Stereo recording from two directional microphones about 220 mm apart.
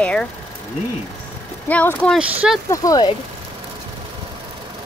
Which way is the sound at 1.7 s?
5° left (ahead or behind).